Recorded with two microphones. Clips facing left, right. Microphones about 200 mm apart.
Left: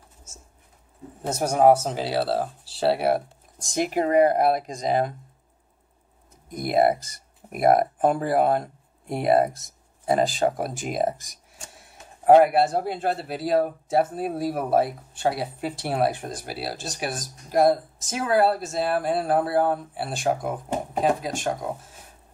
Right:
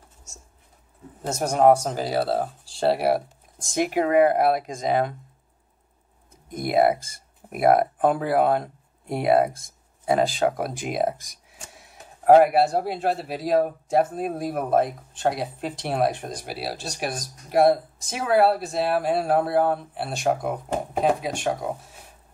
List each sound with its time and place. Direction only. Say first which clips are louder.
1.2 s speech: even; 5° left (ahead or behind)
3.6 s speech: right 1 dB; 50° right (ahead or behind)
6.5 s speech: even; centre (ahead or behind)
9.5 s speech: even; 55° right (ahead or behind)
10.0 s speech: even; centre (ahead or behind)
12.3 s speech: even; centre (ahead or behind)